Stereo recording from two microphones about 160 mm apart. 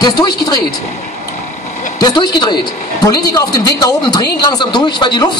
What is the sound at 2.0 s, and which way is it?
A man's voice, 25° left (ahead or behind).